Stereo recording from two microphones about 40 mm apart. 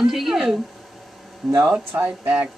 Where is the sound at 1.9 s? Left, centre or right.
Right.